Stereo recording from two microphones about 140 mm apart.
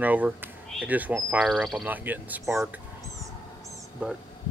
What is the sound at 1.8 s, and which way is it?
Speech, 10° right (ahead or behind).